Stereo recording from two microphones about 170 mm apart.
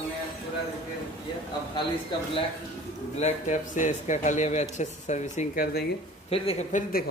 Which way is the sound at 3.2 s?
45° left (ahead or behind).